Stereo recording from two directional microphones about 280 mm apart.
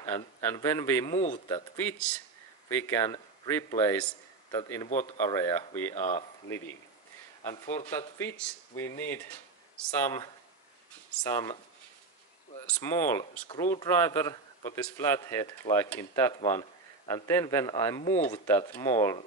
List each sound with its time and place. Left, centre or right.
0.0 s speech: centre
1.1 s speech: left
1.5 s speech: centre
5.9 s speech: left
7.4 s speech: centre
12.6 s speech: centre